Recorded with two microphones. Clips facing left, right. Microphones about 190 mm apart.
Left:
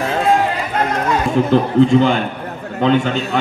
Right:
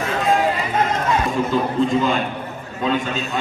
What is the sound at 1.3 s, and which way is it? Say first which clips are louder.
A man's voice: left 6 dB; 70° left (ahead or behind).